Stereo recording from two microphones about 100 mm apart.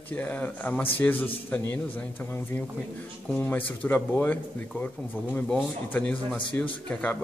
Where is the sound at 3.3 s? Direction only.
15° left (ahead or behind).